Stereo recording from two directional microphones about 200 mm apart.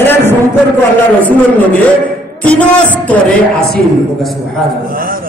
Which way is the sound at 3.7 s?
Centre (ahead or behind).